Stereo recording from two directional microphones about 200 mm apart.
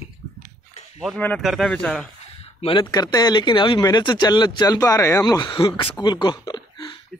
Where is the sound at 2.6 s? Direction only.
25° left (ahead or behind).